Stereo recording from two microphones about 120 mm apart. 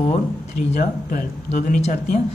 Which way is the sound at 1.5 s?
80° left.